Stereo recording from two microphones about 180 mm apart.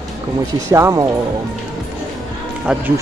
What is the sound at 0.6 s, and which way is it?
Speech, 15° right (ahead or behind).